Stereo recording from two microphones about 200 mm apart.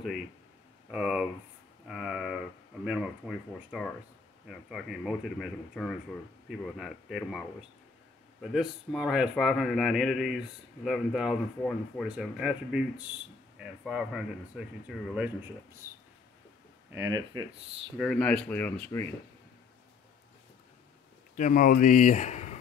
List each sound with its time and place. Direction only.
0.9 s a man's voice: 5° right (ahead or behind)
16.9 s speech: 15° right (ahead or behind)
17.9 s a man's voice: centre (ahead or behind)
21.4 s speech: 40° left (ahead or behind)